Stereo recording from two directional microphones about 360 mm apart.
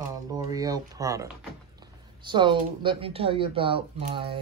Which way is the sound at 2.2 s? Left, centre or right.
Centre.